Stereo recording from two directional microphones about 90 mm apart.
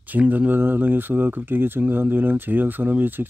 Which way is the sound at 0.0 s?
20° right (ahead or behind).